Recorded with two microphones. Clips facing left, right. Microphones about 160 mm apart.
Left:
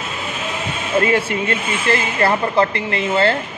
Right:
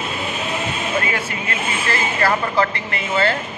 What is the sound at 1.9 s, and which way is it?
Speech, 25° left (ahead or behind).